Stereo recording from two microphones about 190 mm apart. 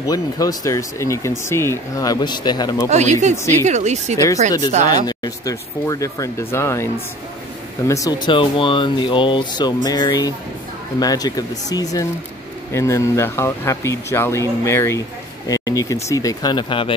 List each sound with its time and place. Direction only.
0.0 s speech: 20° left (ahead or behind)
2.9 s speech: 35° right (ahead or behind)
5.0 s speech: 20° left (ahead or behind)
7.9 s speech: 20° left (ahead or behind)